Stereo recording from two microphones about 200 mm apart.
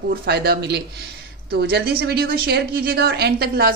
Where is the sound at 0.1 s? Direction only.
55° right (ahead or behind).